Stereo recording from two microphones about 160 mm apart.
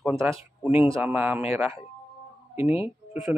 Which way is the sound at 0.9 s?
10° right (ahead or behind).